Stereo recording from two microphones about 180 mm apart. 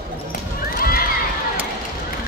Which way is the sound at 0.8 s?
55° left (ahead or behind).